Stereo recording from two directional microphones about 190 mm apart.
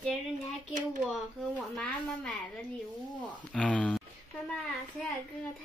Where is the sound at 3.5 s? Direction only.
5° left (ahead or behind).